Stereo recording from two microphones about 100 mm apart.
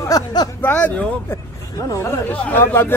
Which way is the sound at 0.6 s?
15° left (ahead or behind).